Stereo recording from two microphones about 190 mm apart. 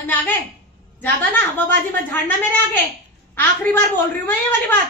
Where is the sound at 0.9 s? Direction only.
10° left (ahead or behind).